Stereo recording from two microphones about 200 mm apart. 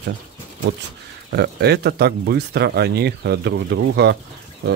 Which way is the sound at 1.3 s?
55° right (ahead or behind).